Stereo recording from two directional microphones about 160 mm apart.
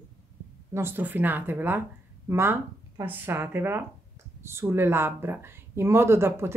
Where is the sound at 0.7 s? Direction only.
15° right (ahead or behind).